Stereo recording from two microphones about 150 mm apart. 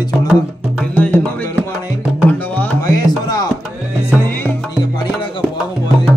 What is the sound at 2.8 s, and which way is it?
Music, 25° left (ahead or behind).